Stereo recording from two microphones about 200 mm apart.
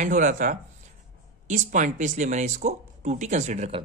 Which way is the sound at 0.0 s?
40° right (ahead or behind).